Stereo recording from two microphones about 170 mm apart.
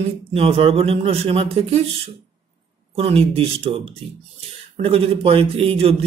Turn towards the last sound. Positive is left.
turn(degrees=-35)  # may be behind; listen again after turning